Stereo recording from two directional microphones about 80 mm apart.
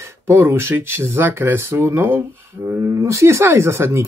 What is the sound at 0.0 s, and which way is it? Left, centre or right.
Speech, right.